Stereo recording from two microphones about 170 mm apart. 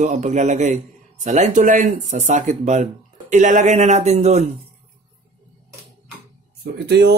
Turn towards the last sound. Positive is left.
turn(degrees=-75)  # may be behind; listen again after turning